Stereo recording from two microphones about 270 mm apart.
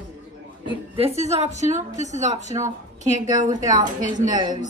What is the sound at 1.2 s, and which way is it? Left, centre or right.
A woman's voice, right.